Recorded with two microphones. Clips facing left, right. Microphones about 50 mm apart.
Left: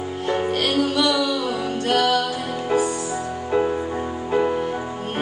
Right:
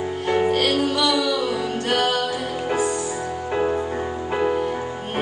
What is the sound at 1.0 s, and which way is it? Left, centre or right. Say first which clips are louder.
Music: even; right.